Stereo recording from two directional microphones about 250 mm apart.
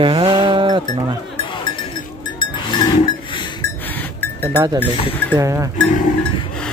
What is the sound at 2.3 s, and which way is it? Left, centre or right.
Livestock, centre.